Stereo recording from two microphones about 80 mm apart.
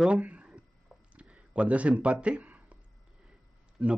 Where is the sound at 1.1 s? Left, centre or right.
Centre.